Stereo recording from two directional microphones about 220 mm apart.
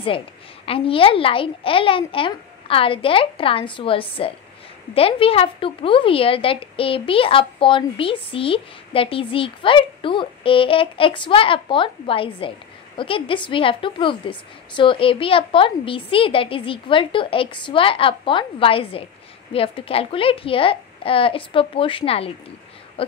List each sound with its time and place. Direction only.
0.7 s speech: 25° left (ahead or behind)